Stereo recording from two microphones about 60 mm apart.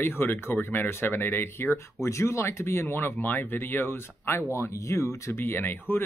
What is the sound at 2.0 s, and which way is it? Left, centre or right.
Speech, left.